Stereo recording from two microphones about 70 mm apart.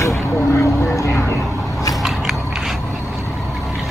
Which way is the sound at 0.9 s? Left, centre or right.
Left.